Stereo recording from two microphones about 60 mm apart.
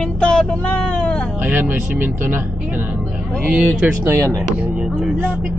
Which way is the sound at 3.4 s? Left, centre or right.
Centre.